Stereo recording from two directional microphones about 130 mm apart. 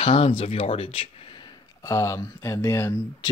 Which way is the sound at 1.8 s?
25° left (ahead or behind).